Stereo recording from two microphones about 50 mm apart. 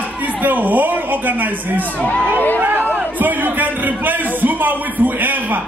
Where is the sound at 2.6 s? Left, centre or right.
Right.